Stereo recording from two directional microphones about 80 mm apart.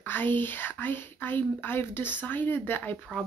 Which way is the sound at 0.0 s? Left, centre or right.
Left.